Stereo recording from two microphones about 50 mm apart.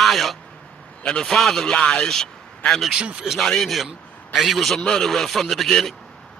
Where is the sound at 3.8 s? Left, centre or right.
Centre.